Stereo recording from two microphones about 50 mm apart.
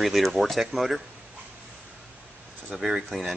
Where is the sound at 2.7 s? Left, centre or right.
Centre.